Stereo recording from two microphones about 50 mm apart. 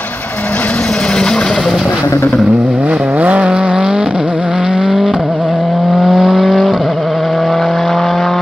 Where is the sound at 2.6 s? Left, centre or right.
Right.